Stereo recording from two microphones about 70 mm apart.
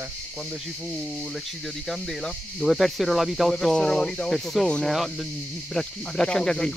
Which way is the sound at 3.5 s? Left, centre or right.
Centre.